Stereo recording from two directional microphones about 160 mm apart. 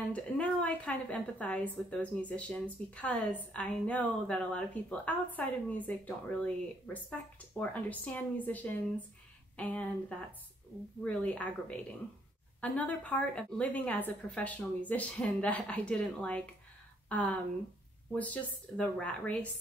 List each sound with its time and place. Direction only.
0.1 s a woman's voice: 10° left (ahead or behind)